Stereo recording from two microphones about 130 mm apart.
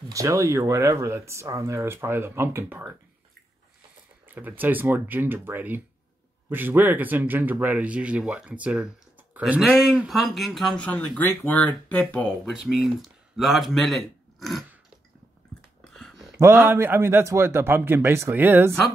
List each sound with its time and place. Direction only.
0.1 s speech: 25° right (ahead or behind)
4.3 s speech: 15° right (ahead or behind)
15.8 s a sound: 5° left (ahead or behind)
16.3 s speech: 15° right (ahead or behind)